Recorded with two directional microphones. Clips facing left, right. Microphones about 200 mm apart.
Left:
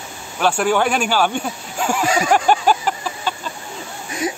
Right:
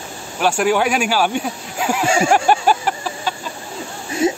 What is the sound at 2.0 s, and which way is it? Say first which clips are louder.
Speech: right 3 dB; 25° right (ahead or behind).